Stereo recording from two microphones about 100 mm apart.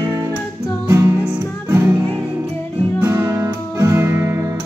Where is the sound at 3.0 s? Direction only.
30° right (ahead or behind).